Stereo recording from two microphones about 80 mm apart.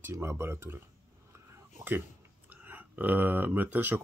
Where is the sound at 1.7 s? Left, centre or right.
Right.